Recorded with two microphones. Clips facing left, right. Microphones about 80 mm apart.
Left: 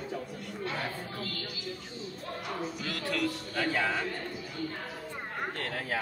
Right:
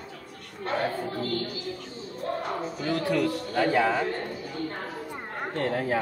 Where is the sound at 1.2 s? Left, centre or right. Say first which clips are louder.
Right 9 dB; right.